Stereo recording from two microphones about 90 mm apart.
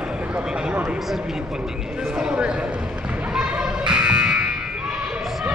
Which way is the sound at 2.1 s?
10° right (ahead or behind).